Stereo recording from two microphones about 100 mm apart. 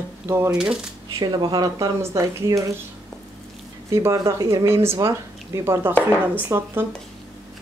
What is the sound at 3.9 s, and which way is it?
A woman's voice, 30° right (ahead or behind).